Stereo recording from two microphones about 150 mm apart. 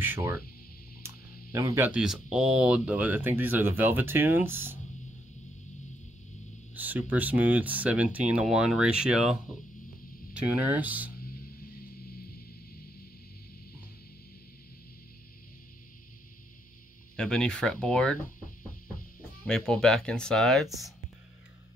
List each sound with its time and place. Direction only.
0.0 s speech: 15° right (ahead or behind)
1.0 s a sound: 20° right (ahead or behind)
1.9 s speech: 5° right (ahead or behind)
6.7 s speech: 10° right (ahead or behind)
17.2 s speech: 5° left (ahead or behind)
19.4 s speech: 5° left (ahead or behind)